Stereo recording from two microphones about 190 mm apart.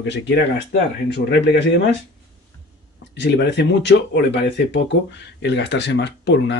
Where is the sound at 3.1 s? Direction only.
60° left (ahead or behind).